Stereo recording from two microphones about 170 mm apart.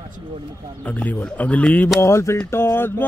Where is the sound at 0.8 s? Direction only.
10° left (ahead or behind).